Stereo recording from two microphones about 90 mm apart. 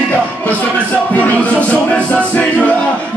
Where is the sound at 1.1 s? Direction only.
15° left (ahead or behind).